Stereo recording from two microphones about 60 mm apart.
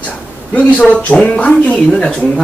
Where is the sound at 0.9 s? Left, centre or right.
Left.